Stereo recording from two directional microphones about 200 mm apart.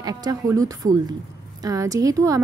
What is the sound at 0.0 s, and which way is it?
A woman's voice, 20° right (ahead or behind).